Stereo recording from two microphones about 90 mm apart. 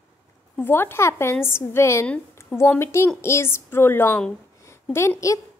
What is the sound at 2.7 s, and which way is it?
A woman's voice, 30° left (ahead or behind).